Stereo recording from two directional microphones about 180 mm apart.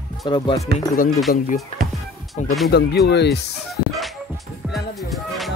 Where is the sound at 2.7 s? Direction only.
65° left (ahead or behind).